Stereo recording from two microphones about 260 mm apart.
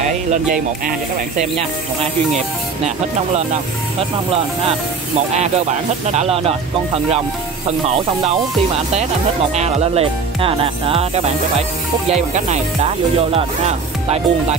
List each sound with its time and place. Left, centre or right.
0.0 s speech: right
6.1 s speech: right
7.9 s speech: right
9.6 s speech: right